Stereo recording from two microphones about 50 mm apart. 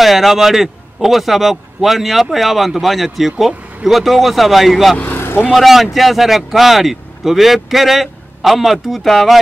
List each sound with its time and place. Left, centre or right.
0.0 s a man's voice: centre
5.0 s vehicle: left
5.5 s a man's voice: centre